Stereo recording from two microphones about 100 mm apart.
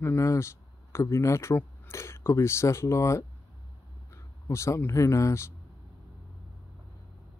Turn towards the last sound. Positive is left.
turn(degrees=30)  # may be behind; listen again after turning